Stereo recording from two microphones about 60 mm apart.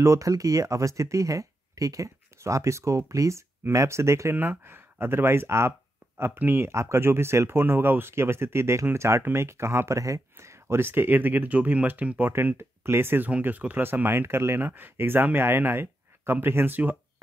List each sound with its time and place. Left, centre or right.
0.0 s speech: right
0.3 s speech: right
4.4 s speech: right
6.7 s speech: right
12.3 s speech: right
13.4 s speech: right